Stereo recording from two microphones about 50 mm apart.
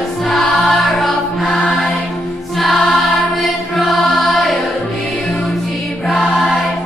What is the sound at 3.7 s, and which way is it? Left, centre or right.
Music, centre.